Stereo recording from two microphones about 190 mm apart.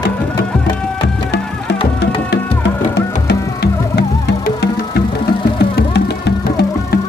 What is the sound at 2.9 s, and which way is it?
Music, 60° left (ahead or behind).